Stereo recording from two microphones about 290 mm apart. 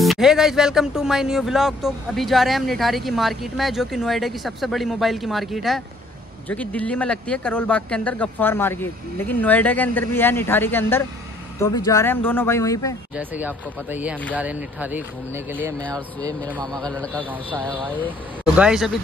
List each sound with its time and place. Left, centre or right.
0.0 s speech: centre
13.1 s speech: centre
16.8 s speech: centre